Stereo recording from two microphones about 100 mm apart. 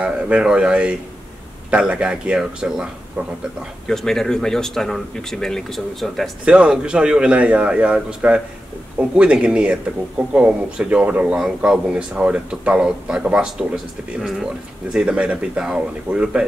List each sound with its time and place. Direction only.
0.0 s speech: 10° right (ahead or behind)
3.8 s speech: 5° left (ahead or behind)
6.4 s speech: 10° right (ahead or behind)
14.9 s speech: 10° right (ahead or behind)